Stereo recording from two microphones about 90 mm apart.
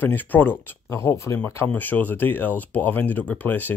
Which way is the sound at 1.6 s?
20° left (ahead or behind).